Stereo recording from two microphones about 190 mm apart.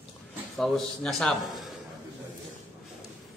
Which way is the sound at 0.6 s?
Centre (ahead or behind).